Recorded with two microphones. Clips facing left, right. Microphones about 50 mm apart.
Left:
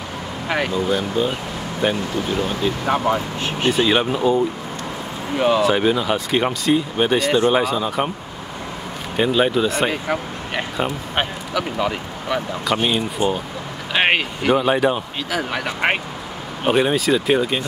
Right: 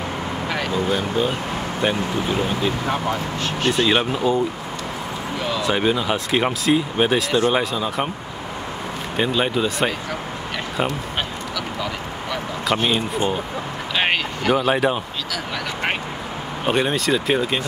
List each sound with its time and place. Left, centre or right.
0.5 s speech: centre
0.7 s speech: centre
2.9 s speech: centre
3.7 s speech: centre
5.6 s speech: centre
9.1 s speech: centre
11.1 s speech: left
12.6 s speech: centre
13.2 s speech: centre
14.5 s speech: centre
15.3 s speech: left
16.6 s speech: centre